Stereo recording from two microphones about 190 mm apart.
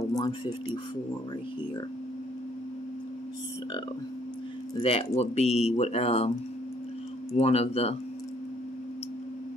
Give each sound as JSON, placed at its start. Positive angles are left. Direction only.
{"t": 0.1, "sound": "a sound", "side_deg": 20}
{"t": 4.8, "sound": "speech", "side_deg": 30}
{"t": 7.3, "sound": "speech", "side_deg": 35}